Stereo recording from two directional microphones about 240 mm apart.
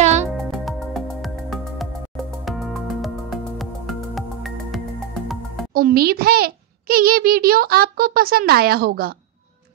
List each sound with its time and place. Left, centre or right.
0.0 s music: right
0.4 s music: centre
5.7 s a child's voice: right